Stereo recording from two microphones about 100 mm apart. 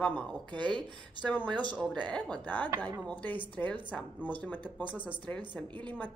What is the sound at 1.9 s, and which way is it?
A woman's voice, 10° left (ahead or behind).